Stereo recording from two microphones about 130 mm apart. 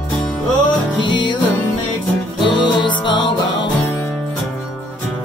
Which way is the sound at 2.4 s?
40° left (ahead or behind).